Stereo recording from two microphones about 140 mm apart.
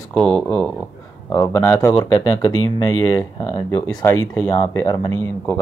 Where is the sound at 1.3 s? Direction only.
20° left (ahead or behind).